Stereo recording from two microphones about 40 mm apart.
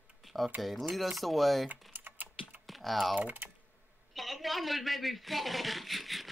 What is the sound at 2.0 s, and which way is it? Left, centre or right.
Typing, right.